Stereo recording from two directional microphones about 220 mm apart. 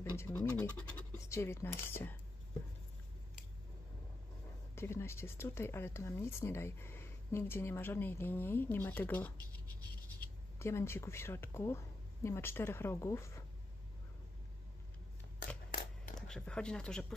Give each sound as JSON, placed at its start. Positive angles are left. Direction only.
{"t": 0.2, "sound": "speech", "side_deg": 10}
{"t": 4.7, "sound": "speech", "side_deg": 10}
{"t": 10.6, "sound": "speech", "side_deg": 10}
{"t": 15.3, "sound": "a sound", "side_deg": 40}
{"t": 16.2, "sound": "speech", "side_deg": 5}